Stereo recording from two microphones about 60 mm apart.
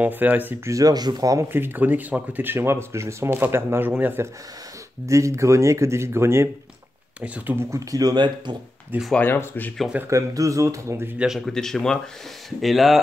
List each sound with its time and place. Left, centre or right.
0.0 s speech: right
0.7 s speech: right
1.5 s speech: right
2.5 s speech: right
3.3 s speech: right
5.0 s speech: right
7.2 s speech: right
7.7 s speech: right
9.2 s speech: left
10.0 s speech: right
11.2 s speech: centre